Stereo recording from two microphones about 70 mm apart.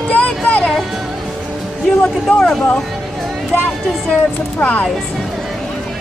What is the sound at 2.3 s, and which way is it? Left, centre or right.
Speech, centre.